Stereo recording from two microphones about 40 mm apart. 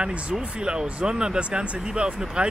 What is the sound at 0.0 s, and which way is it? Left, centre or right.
Speech, right.